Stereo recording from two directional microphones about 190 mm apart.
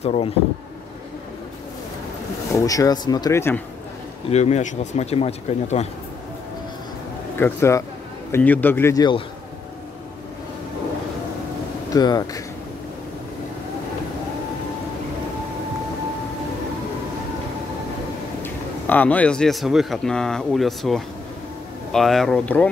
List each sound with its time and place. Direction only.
0.0 s speech: 35° left (ahead or behind)
2.5 s speech: 20° left (ahead or behind)
4.3 s speech: 35° left (ahead or behind)
7.3 s speech: 15° left (ahead or behind)
11.9 s speech: 20° left (ahead or behind)
18.4 s a man's voice: 10° left (ahead or behind)